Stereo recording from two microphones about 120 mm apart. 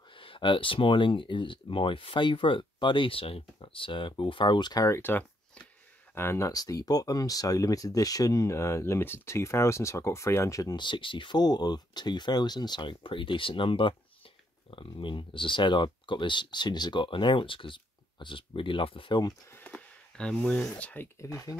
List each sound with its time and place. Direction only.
0.1 s speech: 45° left (ahead or behind)
19.5 s speech: 15° left (ahead or behind)